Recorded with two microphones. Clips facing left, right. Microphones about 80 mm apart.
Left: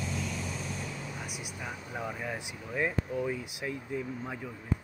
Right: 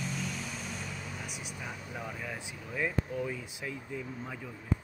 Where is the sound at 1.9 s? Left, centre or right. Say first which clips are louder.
Left 5 dB; centre.